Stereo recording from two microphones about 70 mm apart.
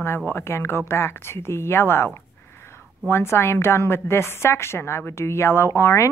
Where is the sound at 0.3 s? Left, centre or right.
Left.